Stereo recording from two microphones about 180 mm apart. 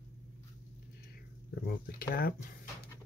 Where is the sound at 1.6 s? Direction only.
55° left (ahead or behind).